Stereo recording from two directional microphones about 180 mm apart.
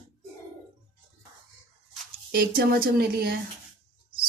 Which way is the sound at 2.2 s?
55° right (ahead or behind).